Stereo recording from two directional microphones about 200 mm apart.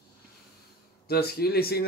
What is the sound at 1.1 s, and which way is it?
Speech, 50° left (ahead or behind).